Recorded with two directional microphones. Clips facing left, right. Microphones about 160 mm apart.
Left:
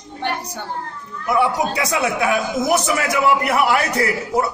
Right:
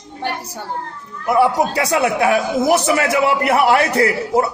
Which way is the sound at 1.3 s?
35° right (ahead or behind).